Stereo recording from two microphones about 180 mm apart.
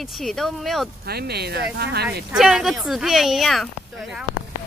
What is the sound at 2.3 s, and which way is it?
Speech, 5° right (ahead or behind).